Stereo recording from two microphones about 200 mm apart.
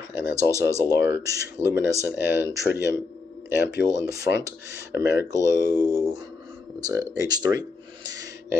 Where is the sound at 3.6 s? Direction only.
60° left (ahead or behind).